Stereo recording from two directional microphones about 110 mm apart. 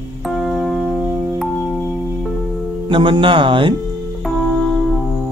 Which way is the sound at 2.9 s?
50° right (ahead or behind).